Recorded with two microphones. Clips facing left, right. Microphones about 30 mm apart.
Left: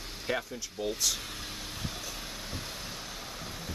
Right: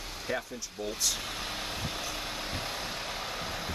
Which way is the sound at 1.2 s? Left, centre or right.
Right.